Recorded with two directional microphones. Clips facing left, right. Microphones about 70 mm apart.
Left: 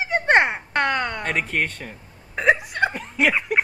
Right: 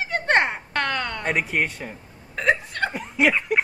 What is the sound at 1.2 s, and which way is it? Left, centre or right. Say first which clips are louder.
Speech: even; centre.